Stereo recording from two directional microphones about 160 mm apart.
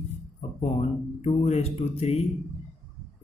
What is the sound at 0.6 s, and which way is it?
Speech, 45° left (ahead or behind).